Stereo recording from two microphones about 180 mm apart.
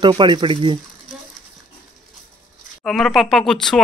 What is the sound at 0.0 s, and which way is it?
Speech, 25° right (ahead or behind).